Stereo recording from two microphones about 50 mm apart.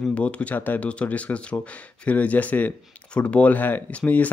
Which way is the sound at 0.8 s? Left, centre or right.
Left.